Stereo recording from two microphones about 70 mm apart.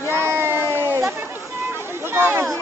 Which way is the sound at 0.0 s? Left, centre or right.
Right.